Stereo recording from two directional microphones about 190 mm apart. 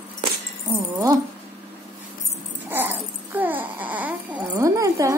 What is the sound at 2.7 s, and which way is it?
Babbling, 10° right (ahead or behind).